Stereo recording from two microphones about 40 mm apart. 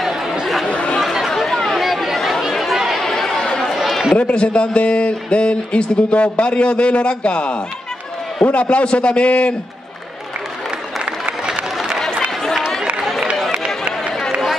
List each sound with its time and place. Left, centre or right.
0.0 s chatter: centre
0.7 s chatter: left
0.9 s chatter: centre
3.1 s chatter: centre
3.5 s a sound: centre
4.2 s a man's voice: left